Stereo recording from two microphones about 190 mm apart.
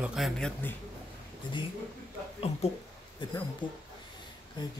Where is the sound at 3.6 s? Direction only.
25° left (ahead or behind).